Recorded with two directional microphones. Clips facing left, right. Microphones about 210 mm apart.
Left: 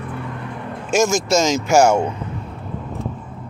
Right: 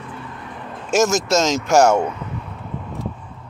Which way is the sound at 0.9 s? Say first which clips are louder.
Even; centre (ahead or behind).